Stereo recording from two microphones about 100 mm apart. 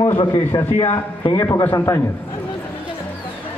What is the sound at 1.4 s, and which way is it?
Speech, 30° left (ahead or behind).